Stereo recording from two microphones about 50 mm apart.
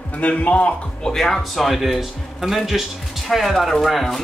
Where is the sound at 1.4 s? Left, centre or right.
Centre.